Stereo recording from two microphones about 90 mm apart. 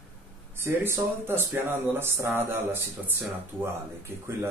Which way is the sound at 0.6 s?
25° right (ahead or behind).